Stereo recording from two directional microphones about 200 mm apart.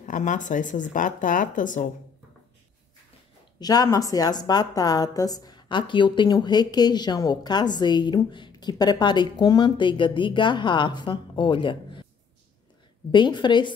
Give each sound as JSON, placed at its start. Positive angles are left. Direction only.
{"t": 0.0, "sound": "speech", "side_deg": 40}
{"t": 3.5, "sound": "a woman's voice", "side_deg": 20}
{"t": 13.1, "sound": "a woman's voice", "side_deg": 25}